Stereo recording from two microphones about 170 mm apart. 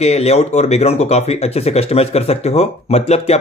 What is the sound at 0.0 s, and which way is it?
Speech, 40° left (ahead or behind).